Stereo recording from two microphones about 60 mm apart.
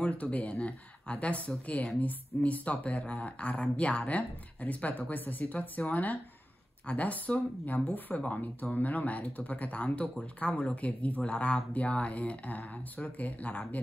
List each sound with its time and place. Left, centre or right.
0.0 s speech: left
8.4 s speech: left